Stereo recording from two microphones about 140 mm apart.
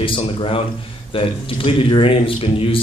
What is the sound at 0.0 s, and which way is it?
Speech, 40° left (ahead or behind).